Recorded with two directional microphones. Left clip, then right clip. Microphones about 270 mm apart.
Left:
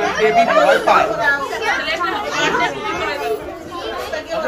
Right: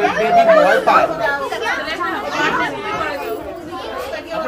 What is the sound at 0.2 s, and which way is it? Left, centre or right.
Speech, right.